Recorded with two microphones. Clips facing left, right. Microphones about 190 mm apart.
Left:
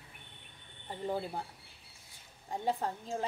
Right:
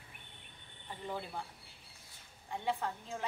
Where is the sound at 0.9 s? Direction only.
40° left (ahead or behind).